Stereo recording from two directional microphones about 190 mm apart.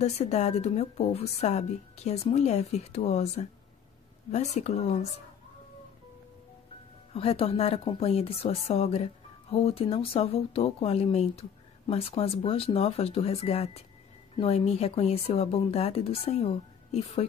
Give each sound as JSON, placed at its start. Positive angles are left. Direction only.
{"t": 0.0, "sound": "a woman's voice", "side_deg": 35}
{"t": 7.2, "sound": "a woman's voice", "side_deg": 30}